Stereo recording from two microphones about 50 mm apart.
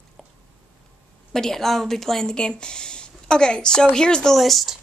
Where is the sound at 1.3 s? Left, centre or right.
Centre.